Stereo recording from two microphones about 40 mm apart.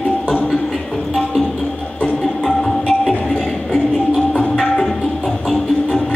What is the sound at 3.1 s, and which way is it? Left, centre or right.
Music, left.